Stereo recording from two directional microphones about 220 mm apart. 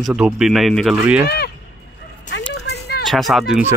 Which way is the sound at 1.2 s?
45° left (ahead or behind).